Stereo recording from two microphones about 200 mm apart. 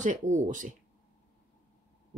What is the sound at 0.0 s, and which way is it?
Speech, 40° right (ahead or behind).